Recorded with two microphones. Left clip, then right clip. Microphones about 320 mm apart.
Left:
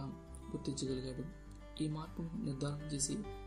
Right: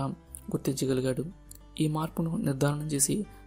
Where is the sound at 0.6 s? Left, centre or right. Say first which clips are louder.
Right 12 dB; right.